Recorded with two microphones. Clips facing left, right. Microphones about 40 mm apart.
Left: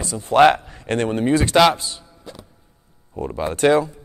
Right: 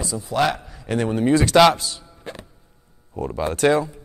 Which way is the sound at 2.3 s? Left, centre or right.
Right.